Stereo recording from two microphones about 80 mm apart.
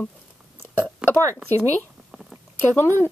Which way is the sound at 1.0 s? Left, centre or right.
Centre.